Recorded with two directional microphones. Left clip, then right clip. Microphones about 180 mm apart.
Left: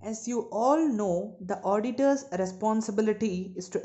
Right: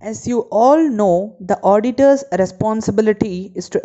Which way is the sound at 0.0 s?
30° right (ahead or behind).